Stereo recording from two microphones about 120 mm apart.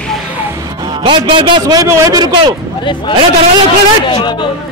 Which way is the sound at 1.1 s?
40° right (ahead or behind).